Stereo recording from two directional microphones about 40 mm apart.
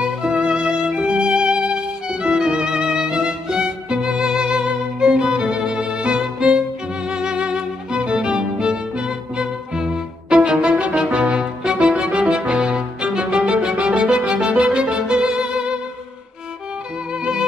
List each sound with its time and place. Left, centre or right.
0.0 s music: right
17.1 s music: right